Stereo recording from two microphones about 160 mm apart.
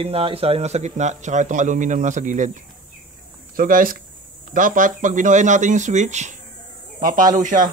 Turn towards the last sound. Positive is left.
turn(degrees=-55)  # may be behind; listen again after turning